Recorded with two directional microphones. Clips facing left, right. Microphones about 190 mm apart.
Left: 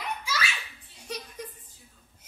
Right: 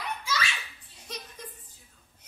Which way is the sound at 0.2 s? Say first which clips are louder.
Right 1 dB; 10° left (ahead or behind).